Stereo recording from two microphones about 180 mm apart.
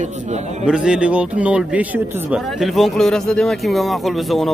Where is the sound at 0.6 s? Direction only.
5° right (ahead or behind).